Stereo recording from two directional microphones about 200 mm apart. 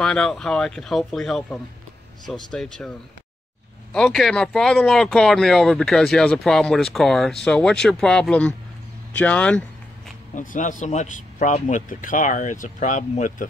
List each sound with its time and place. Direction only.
0.0 s speech: 5° left (ahead or behind)
3.9 s speech: centre (ahead or behind)
10.3 s speech: 40° left (ahead or behind)